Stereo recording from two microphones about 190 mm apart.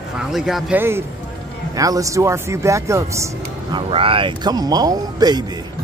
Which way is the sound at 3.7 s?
30° right (ahead or behind).